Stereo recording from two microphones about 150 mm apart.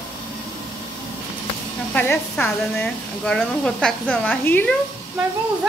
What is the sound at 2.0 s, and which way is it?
A woman's voice, 10° left (ahead or behind).